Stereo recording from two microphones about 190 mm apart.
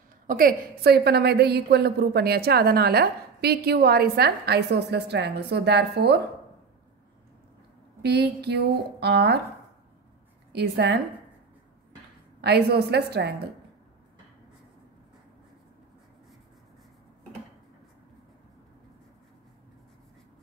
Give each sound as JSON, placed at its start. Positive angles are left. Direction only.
{"t": 0.3, "sound": "a woman's voice", "side_deg": -50}
{"t": 8.0, "sound": "a woman's voice", "side_deg": -60}
{"t": 10.5, "sound": "a woman's voice", "side_deg": -60}
{"t": 12.4, "sound": "a woman's voice", "side_deg": -60}